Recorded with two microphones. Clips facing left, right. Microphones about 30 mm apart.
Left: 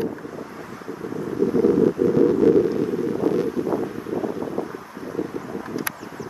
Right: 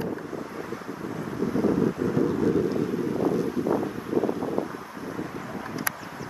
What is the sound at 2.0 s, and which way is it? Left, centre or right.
Vehicle, centre.